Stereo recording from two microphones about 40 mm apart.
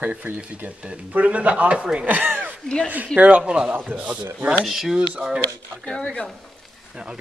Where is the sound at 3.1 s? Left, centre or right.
Right.